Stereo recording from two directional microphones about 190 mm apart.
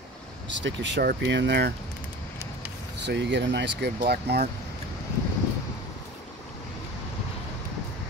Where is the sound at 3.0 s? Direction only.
65° right (ahead or behind).